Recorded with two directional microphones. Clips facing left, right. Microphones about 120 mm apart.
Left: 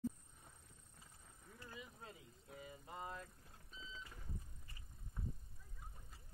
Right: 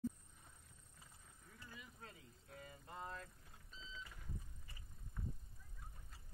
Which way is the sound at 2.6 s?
10° left (ahead or behind).